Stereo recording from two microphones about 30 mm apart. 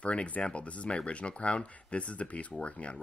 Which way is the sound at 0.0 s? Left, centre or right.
Left.